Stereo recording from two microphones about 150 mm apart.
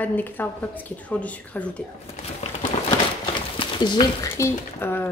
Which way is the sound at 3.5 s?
30° left (ahead or behind).